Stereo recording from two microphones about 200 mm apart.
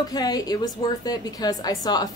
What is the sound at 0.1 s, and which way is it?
A woman's voice, 20° left (ahead or behind).